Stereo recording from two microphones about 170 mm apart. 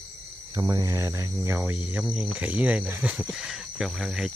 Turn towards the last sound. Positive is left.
turn(degrees=0)  # may be behind; listen again after turning